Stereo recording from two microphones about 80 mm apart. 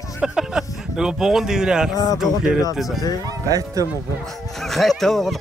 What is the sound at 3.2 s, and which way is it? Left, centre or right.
Speech, right.